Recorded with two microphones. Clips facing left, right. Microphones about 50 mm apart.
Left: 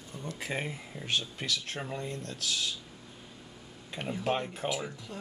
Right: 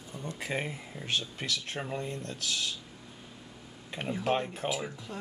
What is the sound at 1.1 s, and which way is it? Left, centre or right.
Speech, right.